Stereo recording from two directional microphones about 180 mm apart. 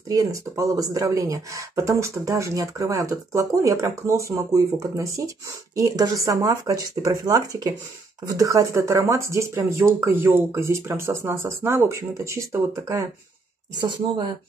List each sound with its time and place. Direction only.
0.1 s speech: 20° right (ahead or behind)